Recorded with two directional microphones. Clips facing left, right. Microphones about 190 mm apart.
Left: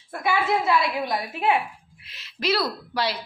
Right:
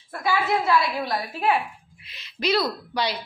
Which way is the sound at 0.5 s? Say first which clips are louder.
Right 1 dB; 20° left (ahead or behind).